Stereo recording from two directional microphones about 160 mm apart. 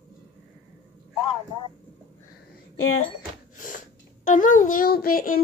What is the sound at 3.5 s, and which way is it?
A child's voice, 55° left (ahead or behind).